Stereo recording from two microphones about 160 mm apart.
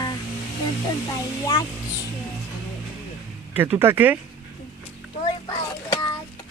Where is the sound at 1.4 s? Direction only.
20° left (ahead or behind).